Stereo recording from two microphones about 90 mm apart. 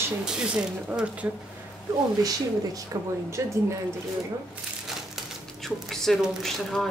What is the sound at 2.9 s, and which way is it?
Speech, 40° right (ahead or behind).